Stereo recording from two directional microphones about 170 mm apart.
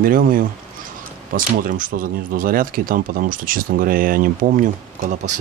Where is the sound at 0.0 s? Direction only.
55° right (ahead or behind).